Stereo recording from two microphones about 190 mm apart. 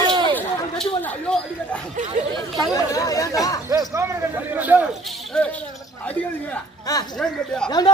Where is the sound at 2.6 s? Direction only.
20° left (ahead or behind).